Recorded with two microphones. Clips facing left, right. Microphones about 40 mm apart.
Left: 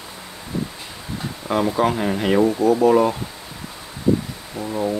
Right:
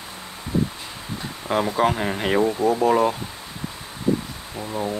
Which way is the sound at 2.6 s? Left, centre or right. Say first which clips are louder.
Left 4 dB; right.